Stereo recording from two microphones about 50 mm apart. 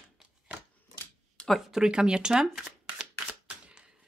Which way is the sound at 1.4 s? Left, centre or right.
Left.